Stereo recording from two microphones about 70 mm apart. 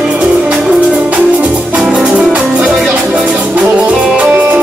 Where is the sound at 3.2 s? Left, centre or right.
Right.